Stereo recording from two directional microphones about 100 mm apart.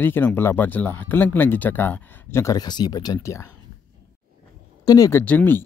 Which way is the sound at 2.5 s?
45° left (ahead or behind).